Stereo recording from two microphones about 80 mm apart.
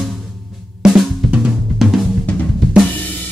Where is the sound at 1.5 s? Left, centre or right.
Centre.